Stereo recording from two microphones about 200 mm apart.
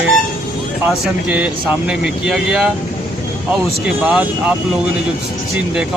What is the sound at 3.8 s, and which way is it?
Speech, 5° right (ahead or behind).